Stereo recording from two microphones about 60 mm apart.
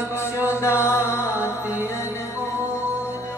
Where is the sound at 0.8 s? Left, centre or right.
Left.